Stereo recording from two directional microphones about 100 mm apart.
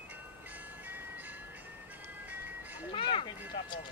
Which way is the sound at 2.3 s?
15° right (ahead or behind).